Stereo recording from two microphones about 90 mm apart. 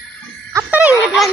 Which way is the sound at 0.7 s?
15° right (ahead or behind).